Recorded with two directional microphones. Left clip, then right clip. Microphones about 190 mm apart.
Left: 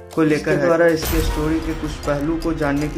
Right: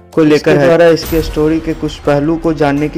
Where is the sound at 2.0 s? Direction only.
35° right (ahead or behind).